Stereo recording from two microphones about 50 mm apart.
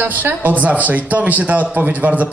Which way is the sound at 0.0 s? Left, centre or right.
Right.